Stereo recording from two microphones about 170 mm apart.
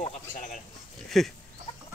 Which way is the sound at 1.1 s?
Centre (ahead or behind).